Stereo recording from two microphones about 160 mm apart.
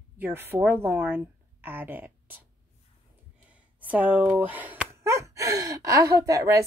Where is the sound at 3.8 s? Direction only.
10° right (ahead or behind).